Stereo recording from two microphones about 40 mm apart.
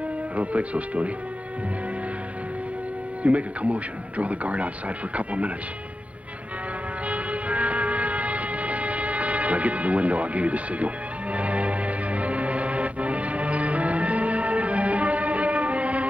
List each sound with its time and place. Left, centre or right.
0.4 s speech: right
3.3 s speech: right
7.1 s vehicle: right
11.3 s music: right